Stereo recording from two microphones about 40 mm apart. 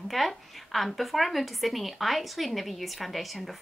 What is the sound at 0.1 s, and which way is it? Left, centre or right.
Speech, centre.